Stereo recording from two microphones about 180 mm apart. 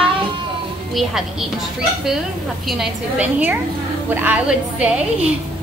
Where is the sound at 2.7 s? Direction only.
10° right (ahead or behind).